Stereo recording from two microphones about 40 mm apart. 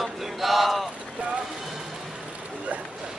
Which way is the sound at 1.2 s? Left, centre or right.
Right.